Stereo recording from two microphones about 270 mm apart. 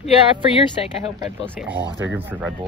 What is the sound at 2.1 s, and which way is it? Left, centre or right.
Speech, centre.